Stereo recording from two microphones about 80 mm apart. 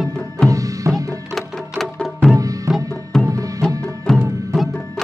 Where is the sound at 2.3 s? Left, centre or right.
Right.